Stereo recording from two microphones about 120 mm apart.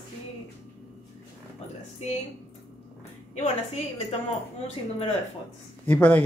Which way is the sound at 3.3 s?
65° left (ahead or behind).